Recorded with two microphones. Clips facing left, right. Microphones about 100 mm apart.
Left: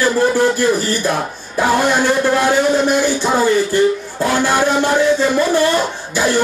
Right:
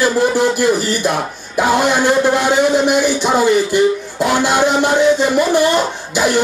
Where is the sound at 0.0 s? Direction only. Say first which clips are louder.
Even; 15° right (ahead or behind).